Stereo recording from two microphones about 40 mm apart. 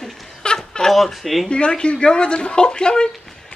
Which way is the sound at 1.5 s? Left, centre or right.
Left.